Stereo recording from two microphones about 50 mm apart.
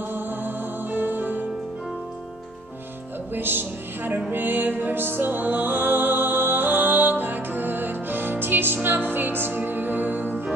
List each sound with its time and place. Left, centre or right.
0.1 s music: right
3.3 s a woman's voice: right
4.3 s music: right